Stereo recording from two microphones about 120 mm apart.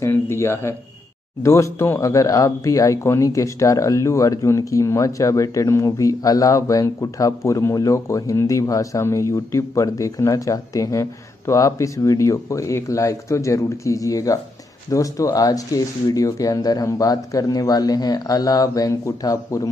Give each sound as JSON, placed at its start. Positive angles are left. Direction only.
{"t": 0.0, "sound": "speech", "side_deg": 20}